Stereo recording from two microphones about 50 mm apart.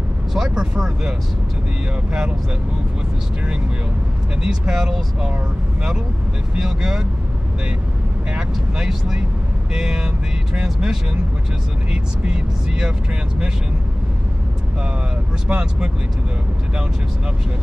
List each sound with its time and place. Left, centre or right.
0.3 s speech: centre
4.4 s speech: centre
6.5 s speech: centre
8.4 s speech: centre
15.4 s speech: centre